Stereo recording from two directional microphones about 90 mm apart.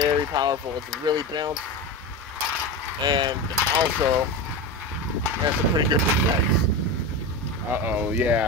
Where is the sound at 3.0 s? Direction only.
60° right (ahead or behind).